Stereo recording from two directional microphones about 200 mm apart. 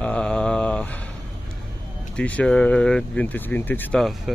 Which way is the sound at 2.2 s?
5° left (ahead or behind).